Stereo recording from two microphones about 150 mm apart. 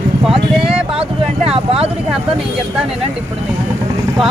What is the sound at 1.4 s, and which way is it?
Speech, 40° right (ahead or behind).